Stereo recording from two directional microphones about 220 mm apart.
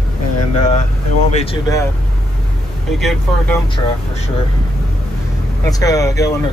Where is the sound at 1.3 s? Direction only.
25° left (ahead or behind).